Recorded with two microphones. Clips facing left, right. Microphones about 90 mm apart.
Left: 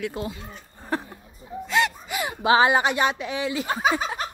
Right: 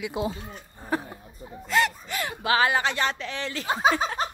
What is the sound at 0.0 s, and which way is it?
Speech, 15° right (ahead or behind).